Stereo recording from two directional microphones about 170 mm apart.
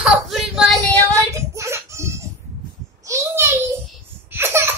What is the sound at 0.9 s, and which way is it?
Child singing, 20° right (ahead or behind).